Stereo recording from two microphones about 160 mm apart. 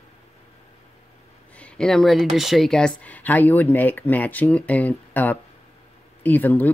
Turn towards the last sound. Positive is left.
turn(degrees=10)  # may be behind; listen again after turning